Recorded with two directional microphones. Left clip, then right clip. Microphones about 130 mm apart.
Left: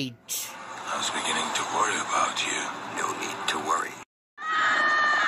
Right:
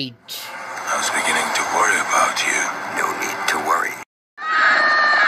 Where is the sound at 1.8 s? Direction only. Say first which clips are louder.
Right 9 dB; 30° right (ahead or behind).